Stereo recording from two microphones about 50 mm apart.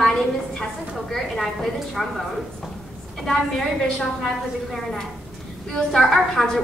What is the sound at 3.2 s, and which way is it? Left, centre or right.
A woman's voice, centre.